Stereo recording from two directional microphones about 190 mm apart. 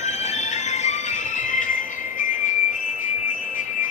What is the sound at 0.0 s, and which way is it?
Music, 35° left (ahead or behind).